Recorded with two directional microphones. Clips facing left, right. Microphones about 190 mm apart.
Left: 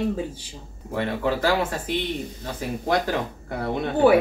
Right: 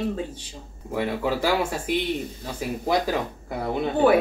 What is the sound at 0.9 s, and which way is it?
Speech, 10° right (ahead or behind).